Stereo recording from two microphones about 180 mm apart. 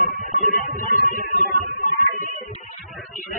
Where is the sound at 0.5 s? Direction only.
50° left (ahead or behind).